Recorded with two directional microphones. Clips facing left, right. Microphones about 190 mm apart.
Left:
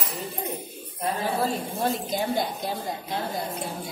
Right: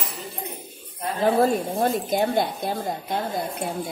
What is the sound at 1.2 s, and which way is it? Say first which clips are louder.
A woman's voice: right 10 dB; 50° right (ahead or behind).